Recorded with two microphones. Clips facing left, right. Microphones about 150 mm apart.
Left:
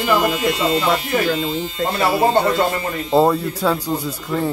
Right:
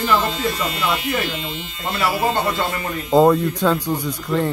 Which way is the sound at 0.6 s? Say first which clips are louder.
Left 5 dB; 30° left (ahead or behind).